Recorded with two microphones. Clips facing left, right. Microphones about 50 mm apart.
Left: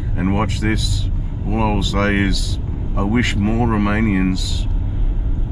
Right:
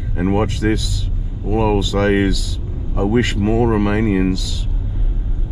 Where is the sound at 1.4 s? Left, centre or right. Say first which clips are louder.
Right 3 dB; left.